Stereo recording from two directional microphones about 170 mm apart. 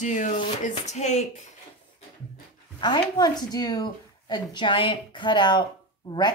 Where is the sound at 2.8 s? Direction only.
25° left (ahead or behind).